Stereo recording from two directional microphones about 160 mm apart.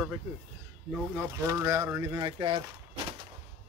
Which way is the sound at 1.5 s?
20° right (ahead or behind).